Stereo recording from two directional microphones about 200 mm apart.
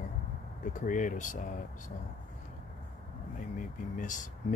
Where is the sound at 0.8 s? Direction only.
40° left (ahead or behind).